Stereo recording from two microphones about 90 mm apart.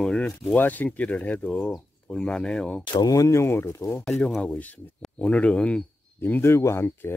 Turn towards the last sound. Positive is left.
turn(degrees=25)  # may be behind; listen again after turning